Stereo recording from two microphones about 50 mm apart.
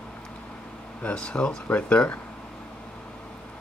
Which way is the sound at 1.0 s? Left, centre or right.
Left.